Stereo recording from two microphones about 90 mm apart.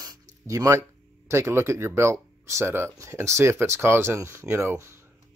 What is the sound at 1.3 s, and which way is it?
Speech, 30° right (ahead or behind).